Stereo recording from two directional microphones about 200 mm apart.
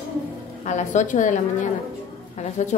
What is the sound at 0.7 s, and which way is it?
A woman's voice, 35° left (ahead or behind).